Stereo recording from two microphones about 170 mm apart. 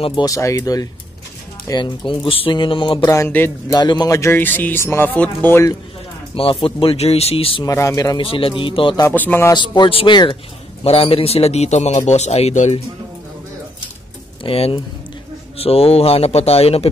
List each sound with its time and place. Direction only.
0.0 s speech: 25° left (ahead or behind)
6.3 s a man's voice: 30° left (ahead or behind)
7.6 s speech: 20° left (ahead or behind)
8.3 s a man's voice: 30° left (ahead or behind)
9.0 s speech: 10° left (ahead or behind)
9.5 s a man's voice: 25° left (ahead or behind)
14.4 s a man's voice: 30° left (ahead or behind)